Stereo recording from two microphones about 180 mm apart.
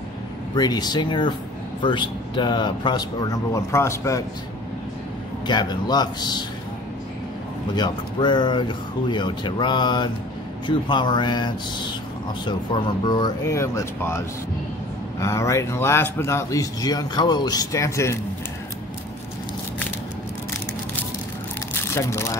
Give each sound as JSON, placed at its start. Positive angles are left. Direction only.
{"t": 0.6, "sound": "speech", "side_deg": 25}
{"t": 5.5, "sound": "speech", "side_deg": 25}
{"t": 7.7, "sound": "speech", "side_deg": 25}
{"t": 21.9, "sound": "speech", "side_deg": 15}